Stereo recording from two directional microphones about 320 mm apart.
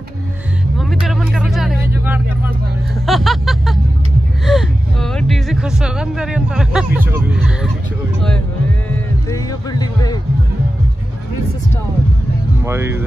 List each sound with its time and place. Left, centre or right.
0.7 s speech: centre
3.1 s snicker: centre
4.5 s speech: centre
9.3 s a sound: centre
12.6 s speech: centre